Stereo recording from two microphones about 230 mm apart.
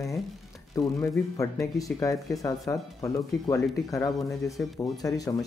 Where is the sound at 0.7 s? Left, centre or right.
Centre.